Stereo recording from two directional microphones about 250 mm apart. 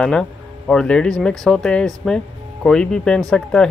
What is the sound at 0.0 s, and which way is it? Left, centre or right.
Speech, centre.